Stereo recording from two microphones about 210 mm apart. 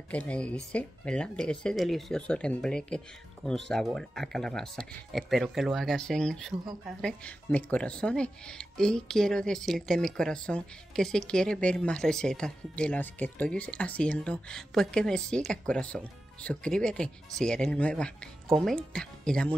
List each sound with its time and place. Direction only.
0.1 s speech: 5° left (ahead or behind)